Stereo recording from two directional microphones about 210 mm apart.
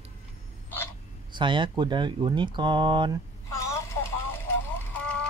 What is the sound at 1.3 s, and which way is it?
Speech, 20° right (ahead or behind).